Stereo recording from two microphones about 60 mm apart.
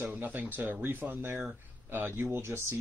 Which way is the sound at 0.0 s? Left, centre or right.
Right.